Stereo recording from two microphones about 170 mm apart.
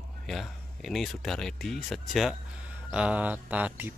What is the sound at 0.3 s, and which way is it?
Speech, centre (ahead or behind).